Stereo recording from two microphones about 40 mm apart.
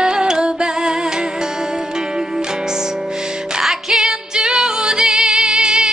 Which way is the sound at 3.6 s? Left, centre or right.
Centre.